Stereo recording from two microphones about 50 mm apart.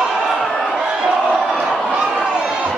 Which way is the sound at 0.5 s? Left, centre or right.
Centre.